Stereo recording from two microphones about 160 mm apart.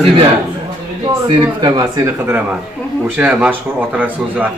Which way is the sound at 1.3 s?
25° right (ahead or behind).